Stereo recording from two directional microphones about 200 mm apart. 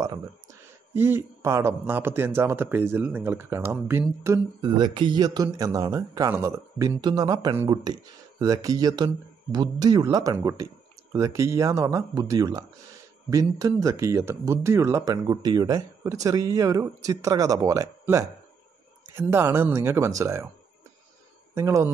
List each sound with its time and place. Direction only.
0.0 s a sound: 15° right (ahead or behind)
0.9 s speech: 10° right (ahead or behind)
21.5 s speech: 15° right (ahead or behind)